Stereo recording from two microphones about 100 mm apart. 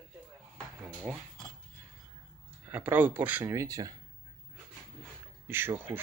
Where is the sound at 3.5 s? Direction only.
35° right (ahead or behind).